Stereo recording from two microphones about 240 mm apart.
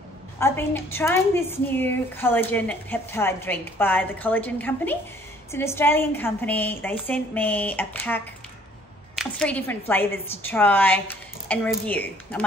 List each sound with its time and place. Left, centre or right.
0.4 s a woman's voice: centre